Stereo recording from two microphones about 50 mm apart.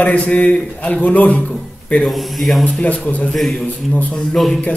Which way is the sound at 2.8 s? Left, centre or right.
Left.